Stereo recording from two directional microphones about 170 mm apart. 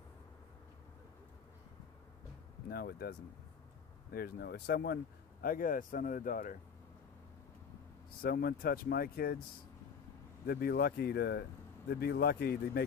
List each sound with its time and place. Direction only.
2.7 s speech: 65° left (ahead or behind)
8.2 s speech: 65° left (ahead or behind)
10.4 s speech: 65° left (ahead or behind)